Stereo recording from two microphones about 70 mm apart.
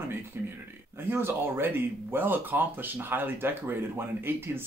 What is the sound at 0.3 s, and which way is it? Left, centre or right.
Speech, right.